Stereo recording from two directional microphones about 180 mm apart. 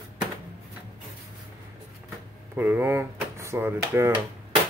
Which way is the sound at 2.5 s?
10° right (ahead or behind).